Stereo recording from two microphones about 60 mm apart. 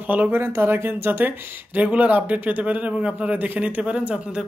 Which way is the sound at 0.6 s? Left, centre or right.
Right.